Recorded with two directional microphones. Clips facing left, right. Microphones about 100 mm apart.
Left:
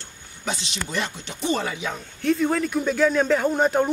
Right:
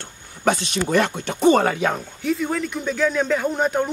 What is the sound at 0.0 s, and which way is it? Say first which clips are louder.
Speech: right 11 dB; 55° right (ahead or behind).